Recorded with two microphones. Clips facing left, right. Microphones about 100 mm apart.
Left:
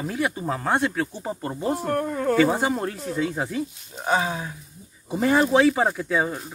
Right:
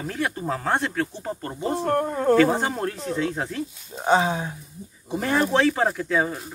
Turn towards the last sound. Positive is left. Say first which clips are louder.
# even
turn(degrees=0)  # may be behind; listen again after turning